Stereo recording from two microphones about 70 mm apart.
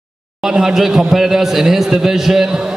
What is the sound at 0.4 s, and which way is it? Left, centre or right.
Speech, centre.